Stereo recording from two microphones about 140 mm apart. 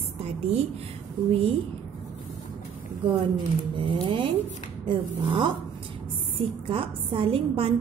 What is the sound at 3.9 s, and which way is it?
Speech, 40° right (ahead or behind).